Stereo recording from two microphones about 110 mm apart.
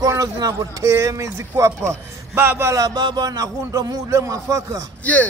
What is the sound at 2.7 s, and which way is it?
A man's voice, 35° right (ahead or behind).